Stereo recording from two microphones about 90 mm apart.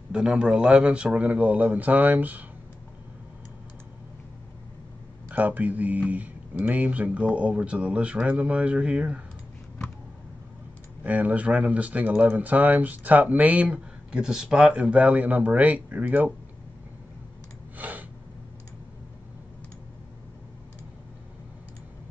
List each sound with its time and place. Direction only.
0.1 s speech: 10° right (ahead or behind)
5.3 s speech: 20° right (ahead or behind)
11.1 s speech: 15° right (ahead or behind)
17.7 s a sound: 20° right (ahead or behind)